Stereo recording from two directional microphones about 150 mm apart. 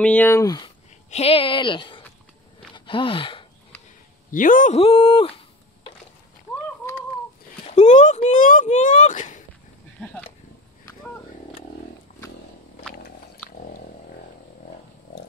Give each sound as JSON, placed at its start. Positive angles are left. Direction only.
{"t": 0.0, "sound": "speech", "side_deg": 10}
{"t": 1.1, "sound": "speech", "side_deg": 40}
{"t": 2.7, "sound": "a sound", "side_deg": 35}
{"t": 4.3, "sound": "a man's voice", "side_deg": 65}
{"t": 4.7, "sound": "speech", "side_deg": 40}
{"t": 7.6, "sound": "speech", "side_deg": 50}
{"t": 13.5, "sound": "a sound", "side_deg": 70}